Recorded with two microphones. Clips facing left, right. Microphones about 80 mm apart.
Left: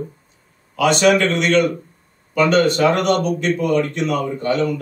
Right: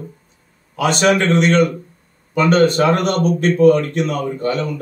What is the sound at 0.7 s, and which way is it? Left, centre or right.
Speech, right.